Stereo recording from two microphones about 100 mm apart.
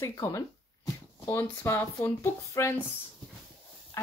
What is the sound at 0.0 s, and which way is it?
Speech, 30° left (ahead or behind).